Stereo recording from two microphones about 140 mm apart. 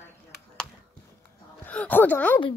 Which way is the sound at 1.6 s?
10° left (ahead or behind).